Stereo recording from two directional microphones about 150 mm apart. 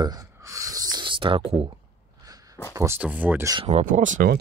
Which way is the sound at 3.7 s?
60° right (ahead or behind).